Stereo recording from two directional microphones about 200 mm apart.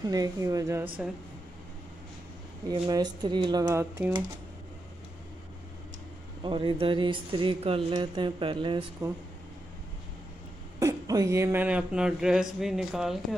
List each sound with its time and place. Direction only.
0.1 s speech: 20° right (ahead or behind)
2.7 s speech: 20° right (ahead or behind)
6.4 s speech: 25° right (ahead or behind)
10.8 s speech: 15° right (ahead or behind)